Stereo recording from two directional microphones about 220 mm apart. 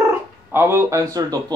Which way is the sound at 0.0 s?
10° right (ahead or behind).